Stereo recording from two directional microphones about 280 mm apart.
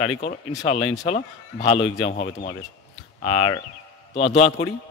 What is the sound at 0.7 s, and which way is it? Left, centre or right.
Speech, centre.